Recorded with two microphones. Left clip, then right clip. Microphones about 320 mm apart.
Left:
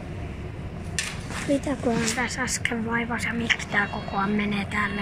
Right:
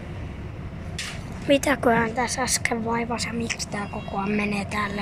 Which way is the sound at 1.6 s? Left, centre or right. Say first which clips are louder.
Right 6 dB; right.